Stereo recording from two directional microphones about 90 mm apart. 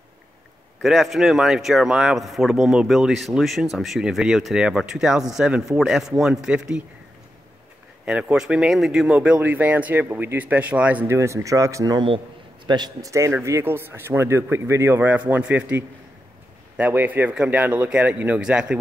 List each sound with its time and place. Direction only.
0.8 s speech: centre (ahead or behind)
8.0 s speech: 15° right (ahead or behind)
11.1 s speech: 35° right (ahead or behind)
12.6 s a man's voice: 50° right (ahead or behind)
13.1 s a man's voice: 35° right (ahead or behind); by 18.8 s 10° right (ahead or behind)